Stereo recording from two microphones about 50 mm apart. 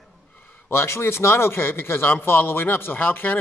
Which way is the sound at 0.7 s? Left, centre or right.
Left.